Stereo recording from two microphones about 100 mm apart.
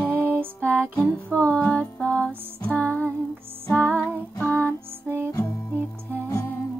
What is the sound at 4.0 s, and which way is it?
Music, 15° left (ahead or behind).